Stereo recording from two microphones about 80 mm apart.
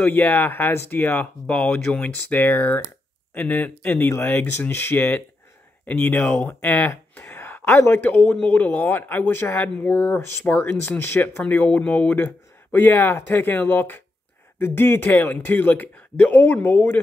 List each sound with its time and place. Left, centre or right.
0.0 s speech: left
1.5 s speech: centre